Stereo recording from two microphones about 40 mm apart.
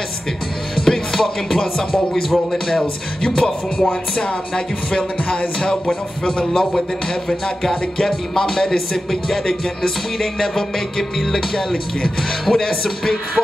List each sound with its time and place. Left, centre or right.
0.7 s music: centre
2.8 s music: centre